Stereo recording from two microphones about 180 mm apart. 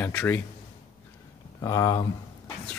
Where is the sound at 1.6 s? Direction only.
20° left (ahead or behind).